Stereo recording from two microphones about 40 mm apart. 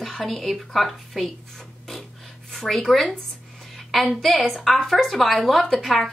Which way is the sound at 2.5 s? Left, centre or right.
Centre.